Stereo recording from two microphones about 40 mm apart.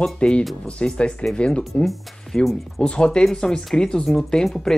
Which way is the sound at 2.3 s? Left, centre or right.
Centre.